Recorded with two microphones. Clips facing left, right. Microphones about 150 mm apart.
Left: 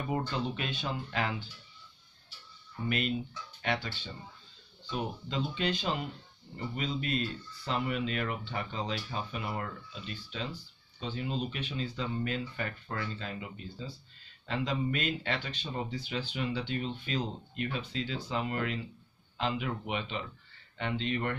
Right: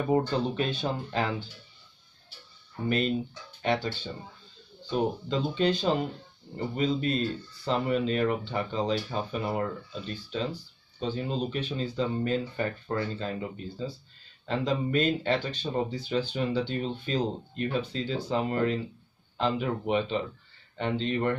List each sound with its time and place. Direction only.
0.1 s speech: 35° right (ahead or behind)
2.7 s speech: 35° right (ahead or behind)